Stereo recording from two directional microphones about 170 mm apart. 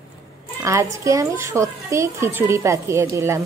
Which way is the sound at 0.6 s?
15° right (ahead or behind).